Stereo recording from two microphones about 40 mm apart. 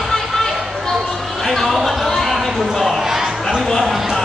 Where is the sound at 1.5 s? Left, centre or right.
Centre.